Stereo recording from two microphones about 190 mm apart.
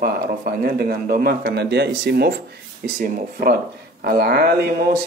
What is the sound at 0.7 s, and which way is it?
A man's voice, 50° right (ahead or behind).